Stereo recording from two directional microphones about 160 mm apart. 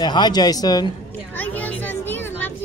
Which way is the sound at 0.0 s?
25° left (ahead or behind).